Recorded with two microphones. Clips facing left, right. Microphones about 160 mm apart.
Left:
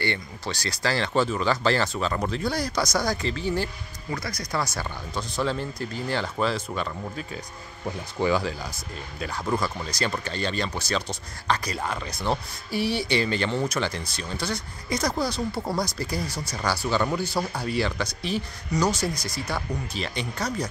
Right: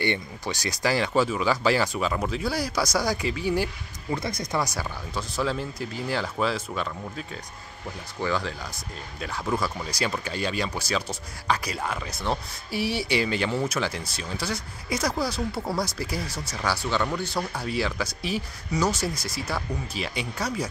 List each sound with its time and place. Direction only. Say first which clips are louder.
0.0 s speech: right 2 dB; 20° right (ahead or behind)
4.1 s speech: right 2 dB; 25° right (ahead or behind)
4.7 s speech: even; 5° right (ahead or behind)
8.2 s speech: left 4 dB; 10° left (ahead or behind)
9.2 s speech: left 1 dB; centre (ahead or behind)